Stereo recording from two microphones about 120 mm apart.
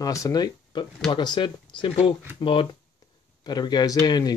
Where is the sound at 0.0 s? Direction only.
30° left (ahead or behind).